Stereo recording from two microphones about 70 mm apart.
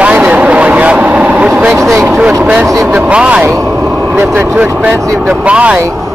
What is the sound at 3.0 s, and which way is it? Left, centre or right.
Speech, centre.